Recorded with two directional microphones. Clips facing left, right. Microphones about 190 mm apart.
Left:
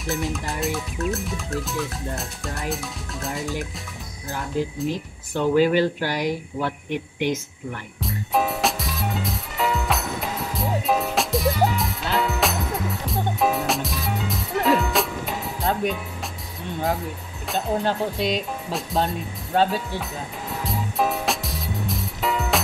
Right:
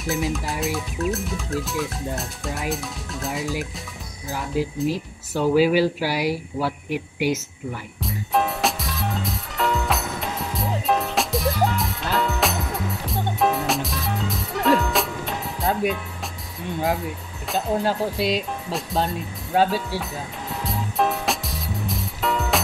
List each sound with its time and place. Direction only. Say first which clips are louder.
0.0 s speech: right 2 dB; centre (ahead or behind)
8.0 s music: even; centre (ahead or behind)
17.5 s speech: right 1 dB; centre (ahead or behind)
20.6 s music: right 1 dB; centre (ahead or behind)